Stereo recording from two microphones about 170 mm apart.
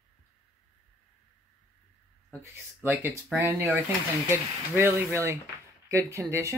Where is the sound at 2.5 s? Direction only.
10° right (ahead or behind).